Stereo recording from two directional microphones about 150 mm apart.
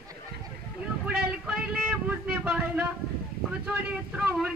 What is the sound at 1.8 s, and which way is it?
Vehicle, 10° right (ahead or behind).